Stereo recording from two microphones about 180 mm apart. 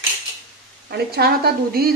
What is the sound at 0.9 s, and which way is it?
Speech, 60° right (ahead or behind).